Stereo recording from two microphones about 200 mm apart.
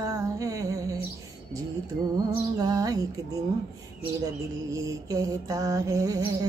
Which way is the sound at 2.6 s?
20° right (ahead or behind).